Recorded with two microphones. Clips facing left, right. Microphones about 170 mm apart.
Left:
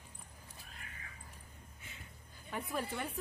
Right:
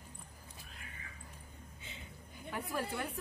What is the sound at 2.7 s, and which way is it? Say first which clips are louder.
Speech: right 1 dB; centre (ahead or behind).